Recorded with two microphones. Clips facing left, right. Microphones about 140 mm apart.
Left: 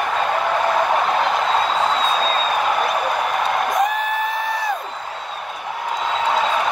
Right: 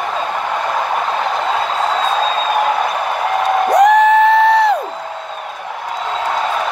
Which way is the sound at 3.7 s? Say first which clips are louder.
Right 11 dB; 80° right.